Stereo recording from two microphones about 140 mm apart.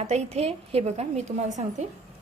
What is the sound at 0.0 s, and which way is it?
A woman's voice, 45° right (ahead or behind).